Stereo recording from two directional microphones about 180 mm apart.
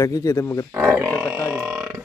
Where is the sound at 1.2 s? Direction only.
10° right (ahead or behind).